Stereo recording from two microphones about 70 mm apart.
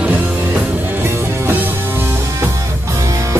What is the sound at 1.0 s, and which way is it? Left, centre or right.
Music, right.